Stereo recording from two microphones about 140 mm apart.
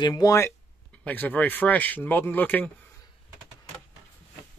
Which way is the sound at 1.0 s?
10° left (ahead or behind).